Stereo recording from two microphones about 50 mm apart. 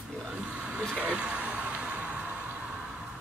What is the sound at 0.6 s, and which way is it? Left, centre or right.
Vehicle, right.